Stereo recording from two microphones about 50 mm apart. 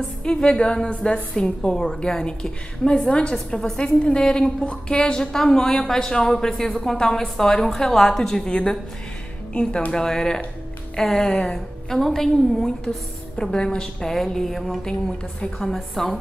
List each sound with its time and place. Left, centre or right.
0.2 s a woman's voice: centre